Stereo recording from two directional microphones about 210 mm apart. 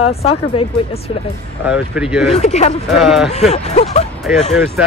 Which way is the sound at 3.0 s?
Centre (ahead or behind).